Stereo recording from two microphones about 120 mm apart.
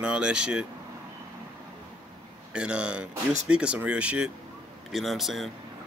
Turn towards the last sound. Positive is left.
turn(degrees=0)  # may be behind; listen again after turning